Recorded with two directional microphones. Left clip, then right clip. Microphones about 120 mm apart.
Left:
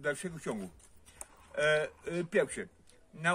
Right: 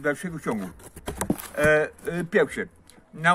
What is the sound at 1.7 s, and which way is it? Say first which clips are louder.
Speech: right 10 dB; 20° left (ahead or behind).